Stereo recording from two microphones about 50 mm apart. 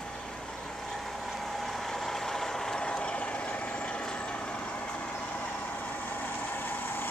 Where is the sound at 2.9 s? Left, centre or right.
Left.